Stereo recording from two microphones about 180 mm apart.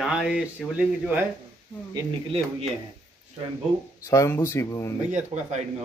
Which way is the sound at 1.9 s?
30° right (ahead or behind).